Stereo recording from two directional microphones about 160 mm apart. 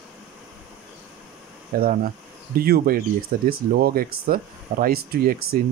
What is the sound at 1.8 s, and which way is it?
Speech, 65° right (ahead or behind).